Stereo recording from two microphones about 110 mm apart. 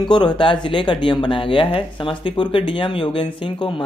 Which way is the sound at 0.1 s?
45° left (ahead or behind).